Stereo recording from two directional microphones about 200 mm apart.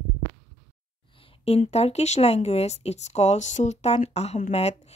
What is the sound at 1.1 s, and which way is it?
A woman's voice, 25° left (ahead or behind).